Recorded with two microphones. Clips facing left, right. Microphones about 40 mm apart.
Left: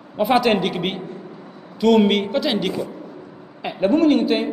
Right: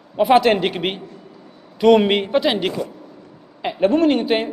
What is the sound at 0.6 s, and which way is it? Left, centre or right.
Speech, right.